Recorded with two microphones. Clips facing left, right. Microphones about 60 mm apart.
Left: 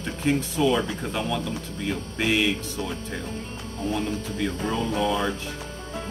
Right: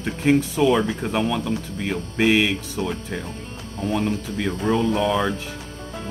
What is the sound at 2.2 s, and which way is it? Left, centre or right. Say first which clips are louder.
Speech: right 5 dB; right.